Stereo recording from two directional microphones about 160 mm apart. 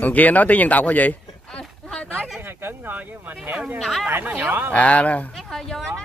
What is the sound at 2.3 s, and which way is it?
Speech, 15° right (ahead or behind).